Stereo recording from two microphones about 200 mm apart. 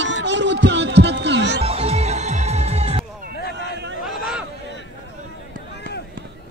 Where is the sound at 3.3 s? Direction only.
55° left (ahead or behind).